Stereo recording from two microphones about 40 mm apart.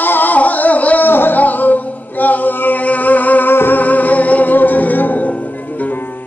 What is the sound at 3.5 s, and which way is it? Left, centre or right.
Music, left.